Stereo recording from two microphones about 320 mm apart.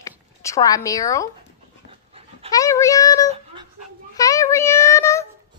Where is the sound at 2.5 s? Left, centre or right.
Centre.